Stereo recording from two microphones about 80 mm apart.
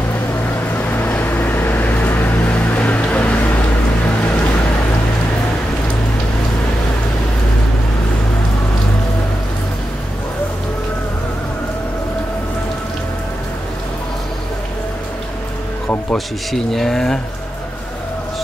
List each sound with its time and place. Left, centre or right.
0.7 s vehicle: left
16.1 s speech: centre